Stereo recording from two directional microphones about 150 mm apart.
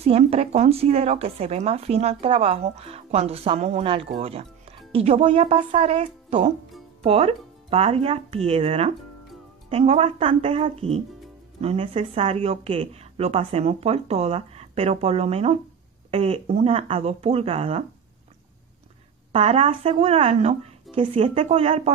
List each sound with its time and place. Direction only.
0.0 s speech: 40° right (ahead or behind)
19.3 s speech: 40° right (ahead or behind)